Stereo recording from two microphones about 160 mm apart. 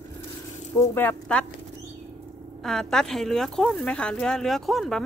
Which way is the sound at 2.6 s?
5° left (ahead or behind).